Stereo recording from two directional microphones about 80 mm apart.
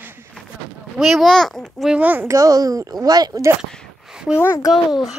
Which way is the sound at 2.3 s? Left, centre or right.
Right.